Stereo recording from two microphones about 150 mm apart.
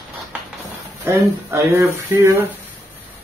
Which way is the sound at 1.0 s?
20° right (ahead or behind).